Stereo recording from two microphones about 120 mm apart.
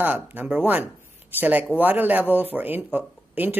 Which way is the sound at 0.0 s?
15° right (ahead or behind).